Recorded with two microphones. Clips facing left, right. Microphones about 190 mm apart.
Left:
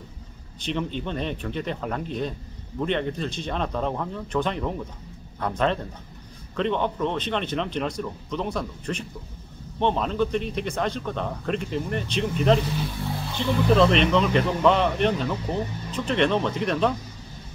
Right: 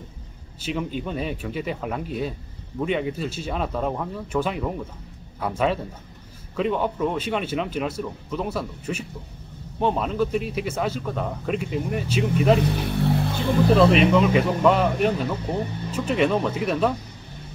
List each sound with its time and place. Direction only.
0.6 s speech: 5° right (ahead or behind)
12.6 s vehicle: 65° right (ahead or behind)
13.7 s speech: 5° right (ahead or behind)